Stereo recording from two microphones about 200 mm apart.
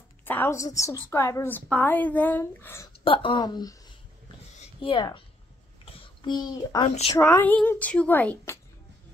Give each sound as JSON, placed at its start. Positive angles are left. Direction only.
{"t": 0.2, "sound": "a woman's voice", "side_deg": 10}
{"t": 3.0, "sound": "a woman's voice", "side_deg": 25}
{"t": 7.2, "sound": "a woman's voice", "side_deg": 10}